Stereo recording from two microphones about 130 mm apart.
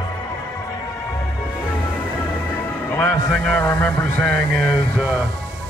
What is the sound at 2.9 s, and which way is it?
Speech, 10° left (ahead or behind).